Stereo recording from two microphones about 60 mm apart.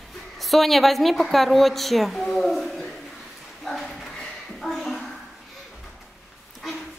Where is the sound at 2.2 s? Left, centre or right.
Centre.